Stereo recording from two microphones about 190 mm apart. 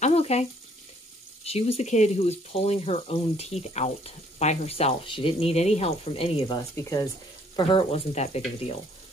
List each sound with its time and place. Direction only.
0.0 s frying: 35° left (ahead or behind)
1.4 s speech: 30° left (ahead or behind)
6.7 s speech: 15° left (ahead or behind)
7.5 s speech: 30° left (ahead or behind)